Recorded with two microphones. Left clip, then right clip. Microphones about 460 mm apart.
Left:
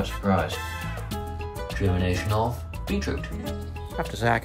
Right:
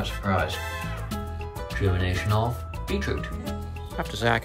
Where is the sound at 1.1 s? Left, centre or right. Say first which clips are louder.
Left 1 dB; left.